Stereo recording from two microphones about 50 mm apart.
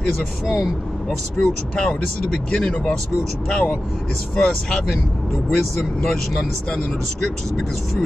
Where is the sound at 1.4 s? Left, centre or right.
Centre.